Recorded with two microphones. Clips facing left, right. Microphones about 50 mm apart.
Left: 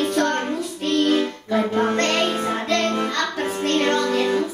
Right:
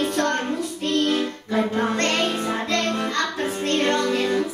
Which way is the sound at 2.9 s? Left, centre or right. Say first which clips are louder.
Left 1 dB; left.